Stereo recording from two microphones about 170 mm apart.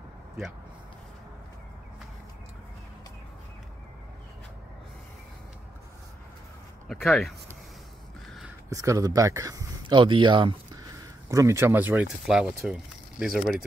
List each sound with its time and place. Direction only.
6.9 s speech: centre (ahead or behind)
8.6 s speech: 20° right (ahead or behind); by 13.4 s 5° right (ahead or behind)